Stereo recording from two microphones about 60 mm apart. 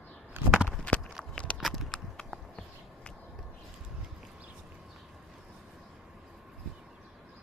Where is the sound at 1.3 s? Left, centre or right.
Centre.